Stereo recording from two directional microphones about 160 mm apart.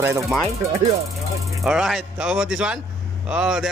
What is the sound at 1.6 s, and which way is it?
A man's voice, 5° right (ahead or behind).